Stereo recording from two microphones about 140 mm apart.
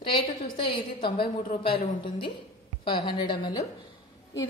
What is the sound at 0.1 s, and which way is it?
A woman's voice, 35° left (ahead or behind).